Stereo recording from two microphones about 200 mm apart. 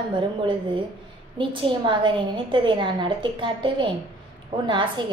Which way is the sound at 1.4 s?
25° right (ahead or behind).